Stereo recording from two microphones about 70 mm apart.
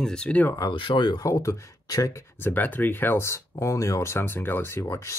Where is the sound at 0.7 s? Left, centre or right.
Left.